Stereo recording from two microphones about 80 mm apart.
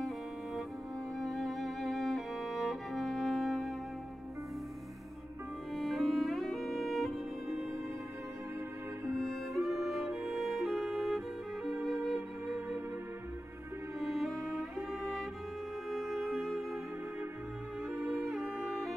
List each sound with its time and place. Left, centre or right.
1.2 s music: centre
5.8 s music: centre
9.2 s music: centre
11.7 s music: right
14.3 s music: right
15.9 s music: centre
17.9 s music: right